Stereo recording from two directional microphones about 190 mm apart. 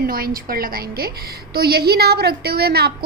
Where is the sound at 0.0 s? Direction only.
50° right (ahead or behind).